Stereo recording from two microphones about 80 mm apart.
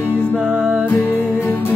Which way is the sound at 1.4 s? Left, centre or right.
Left.